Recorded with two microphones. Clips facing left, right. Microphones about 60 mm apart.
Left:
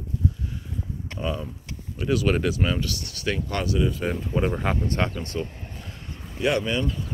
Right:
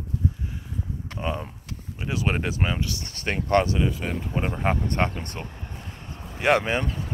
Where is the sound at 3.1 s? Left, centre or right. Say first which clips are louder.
Right 7 dB; right.